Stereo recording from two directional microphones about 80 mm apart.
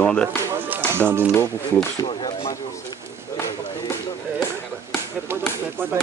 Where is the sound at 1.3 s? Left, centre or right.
Left.